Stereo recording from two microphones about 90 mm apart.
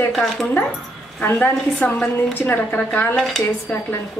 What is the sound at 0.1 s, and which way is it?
Speech, centre (ahead or behind).